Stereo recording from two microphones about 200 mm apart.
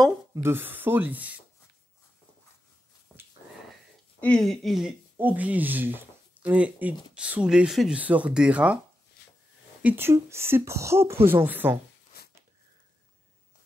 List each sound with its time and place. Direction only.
0.3 s speech: 10° right (ahead or behind)
3.1 s dog: 5° left (ahead or behind)
4.2 s speech: 5° left (ahead or behind)
9.8 s speech: 10° right (ahead or behind)
12.1 s a sound: 50° left (ahead or behind)